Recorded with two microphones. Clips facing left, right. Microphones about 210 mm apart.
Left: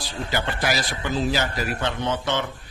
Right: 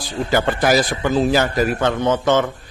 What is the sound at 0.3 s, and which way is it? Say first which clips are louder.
A man's voice: right 9 dB; 50° right (ahead or behind).